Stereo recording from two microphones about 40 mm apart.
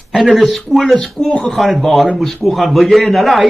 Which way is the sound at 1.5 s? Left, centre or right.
Centre.